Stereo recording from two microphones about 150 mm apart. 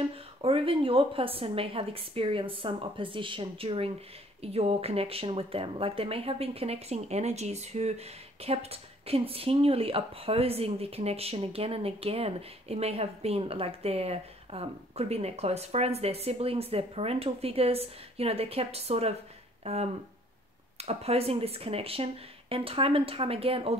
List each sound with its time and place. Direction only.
0.1 s speech: 40° right (ahead or behind)